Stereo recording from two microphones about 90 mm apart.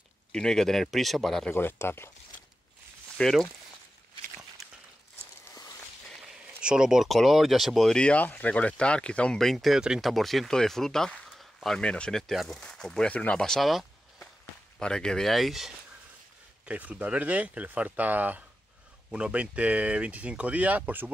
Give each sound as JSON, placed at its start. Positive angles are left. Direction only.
{"t": 0.3, "sound": "speech", "side_deg": 5}
{"t": 1.5, "sound": "speech", "side_deg": 25}
{"t": 3.2, "sound": "speech", "side_deg": 5}
{"t": 5.5, "sound": "a sound", "side_deg": 45}
{"t": 6.2, "sound": "speech", "side_deg": -10}
{"t": 16.6, "sound": "speech", "side_deg": -15}